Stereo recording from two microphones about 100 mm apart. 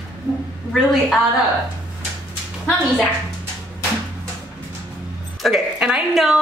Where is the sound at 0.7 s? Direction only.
Centre (ahead or behind).